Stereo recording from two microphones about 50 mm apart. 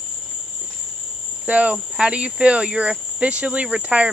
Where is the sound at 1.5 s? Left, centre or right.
Right.